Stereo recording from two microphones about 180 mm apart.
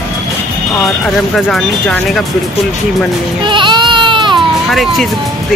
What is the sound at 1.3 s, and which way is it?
Speech, centre (ahead or behind).